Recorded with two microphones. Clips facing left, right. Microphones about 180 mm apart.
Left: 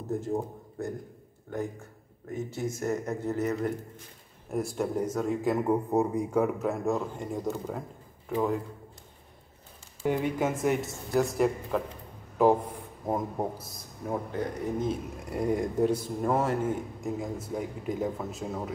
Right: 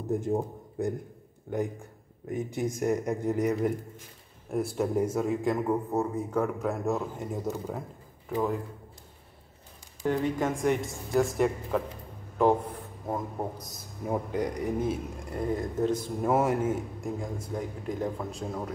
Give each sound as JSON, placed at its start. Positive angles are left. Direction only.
{"t": 0.2, "sound": "a man's voice", "side_deg": -15}
{"t": 2.3, "sound": "a man's voice", "side_deg": -15}
{"t": 4.5, "sound": "a man's voice", "side_deg": 0}
{"t": 5.9, "sound": "a man's voice", "side_deg": 15}
{"t": 10.0, "sound": "a man's voice", "side_deg": 10}
{"t": 13.0, "sound": "speech", "side_deg": 20}
{"t": 13.6, "sound": "a man's voice", "side_deg": 0}
{"t": 14.0, "sound": "a man's voice", "side_deg": -10}
{"t": 15.3, "sound": "speech", "side_deg": 15}
{"t": 16.3, "sound": "a man's voice", "side_deg": -10}